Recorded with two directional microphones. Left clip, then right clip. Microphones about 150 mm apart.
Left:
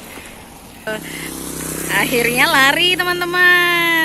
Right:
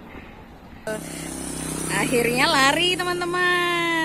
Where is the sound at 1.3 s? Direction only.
55° right (ahead or behind).